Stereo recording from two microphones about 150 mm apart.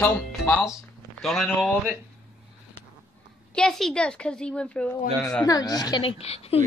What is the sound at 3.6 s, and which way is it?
A woman's voice, 5° left (ahead or behind).